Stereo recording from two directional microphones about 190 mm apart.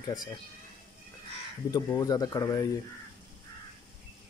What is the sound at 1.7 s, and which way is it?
Speech, 20° left (ahead or behind).